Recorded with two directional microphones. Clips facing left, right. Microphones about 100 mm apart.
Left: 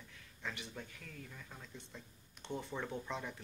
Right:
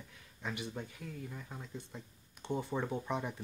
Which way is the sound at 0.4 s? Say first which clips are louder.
Right 5 dB; 15° right (ahead or behind).